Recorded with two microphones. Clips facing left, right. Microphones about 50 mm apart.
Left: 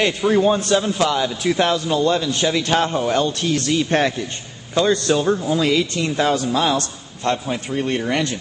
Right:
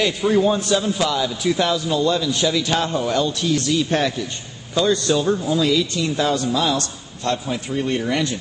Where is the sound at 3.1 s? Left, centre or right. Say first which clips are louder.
Left 1 dB; left.